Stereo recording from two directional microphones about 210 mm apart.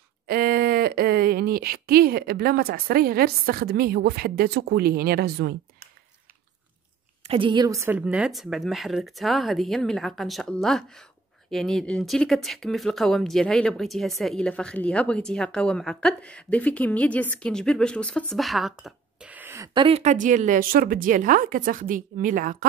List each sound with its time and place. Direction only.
0.3 s speech: 45° right (ahead or behind)
7.2 s a woman's voice: 25° right (ahead or behind); by 22.7 s 40° right (ahead or behind)